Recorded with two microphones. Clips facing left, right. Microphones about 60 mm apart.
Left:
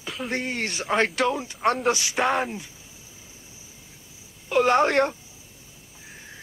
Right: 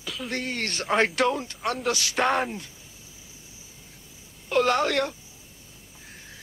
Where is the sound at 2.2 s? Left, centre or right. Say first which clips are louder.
Even; centre.